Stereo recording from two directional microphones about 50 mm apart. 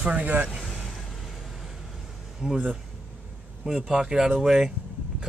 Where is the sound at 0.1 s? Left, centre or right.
Right.